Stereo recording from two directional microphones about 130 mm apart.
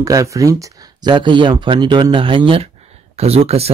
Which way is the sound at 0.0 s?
25° right (ahead or behind).